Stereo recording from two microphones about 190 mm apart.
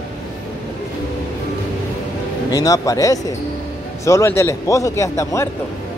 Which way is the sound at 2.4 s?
20° left (ahead or behind).